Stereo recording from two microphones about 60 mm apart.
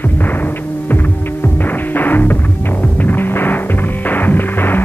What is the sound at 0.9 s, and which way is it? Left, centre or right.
Music, left.